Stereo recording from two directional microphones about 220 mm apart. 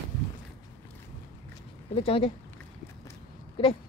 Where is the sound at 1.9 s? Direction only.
25° left (ahead or behind).